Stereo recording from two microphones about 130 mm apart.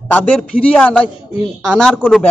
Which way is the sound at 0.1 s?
10° left (ahead or behind).